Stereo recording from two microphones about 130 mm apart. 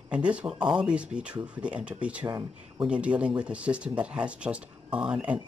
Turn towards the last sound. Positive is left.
turn(degrees=-10)  # may be behind; listen again after turning